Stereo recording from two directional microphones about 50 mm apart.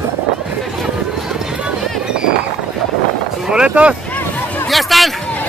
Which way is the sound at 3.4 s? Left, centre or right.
Centre.